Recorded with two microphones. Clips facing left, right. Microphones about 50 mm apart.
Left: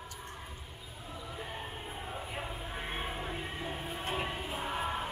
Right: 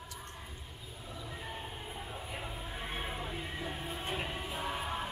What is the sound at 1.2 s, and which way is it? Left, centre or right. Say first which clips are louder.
Music: left 2 dB; centre.